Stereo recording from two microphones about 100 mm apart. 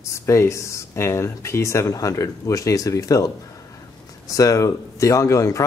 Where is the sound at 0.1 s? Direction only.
30° left (ahead or behind).